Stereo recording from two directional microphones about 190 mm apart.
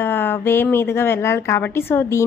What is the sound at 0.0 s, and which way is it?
A woman's voice, 10° left (ahead or behind).